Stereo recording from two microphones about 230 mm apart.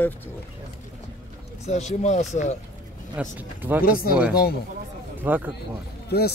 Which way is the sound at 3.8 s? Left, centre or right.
Left.